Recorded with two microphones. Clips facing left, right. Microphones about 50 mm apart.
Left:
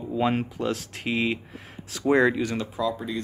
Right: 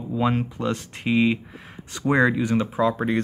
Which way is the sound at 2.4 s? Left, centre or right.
Centre.